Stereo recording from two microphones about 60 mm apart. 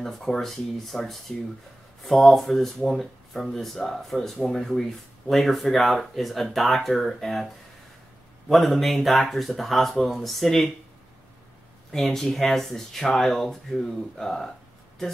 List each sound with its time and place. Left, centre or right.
0.0 s speech: centre
11.9 s speech: centre